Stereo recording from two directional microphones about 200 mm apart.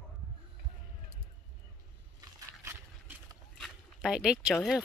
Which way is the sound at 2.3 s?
15° right (ahead or behind).